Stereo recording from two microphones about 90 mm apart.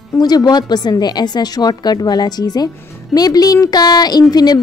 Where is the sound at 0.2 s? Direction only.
50° left (ahead or behind).